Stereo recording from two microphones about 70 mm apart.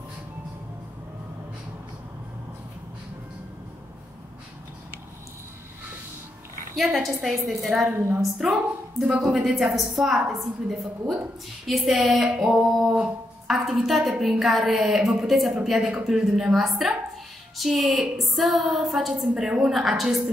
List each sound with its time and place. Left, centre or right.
6.8 s a woman's voice: centre
7.9 s a woman's voice: right
9.2 s a woman's voice: centre